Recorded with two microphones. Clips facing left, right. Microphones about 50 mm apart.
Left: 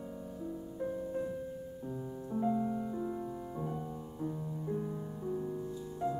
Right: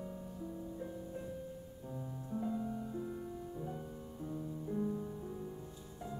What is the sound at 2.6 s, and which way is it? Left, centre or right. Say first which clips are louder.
Music: left 5 dB; left.